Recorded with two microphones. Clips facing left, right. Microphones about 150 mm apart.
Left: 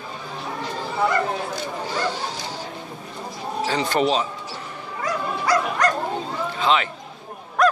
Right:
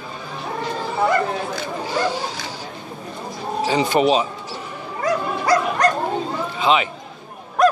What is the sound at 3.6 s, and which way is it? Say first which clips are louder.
Speech: right 4 dB; 10° right (ahead or behind).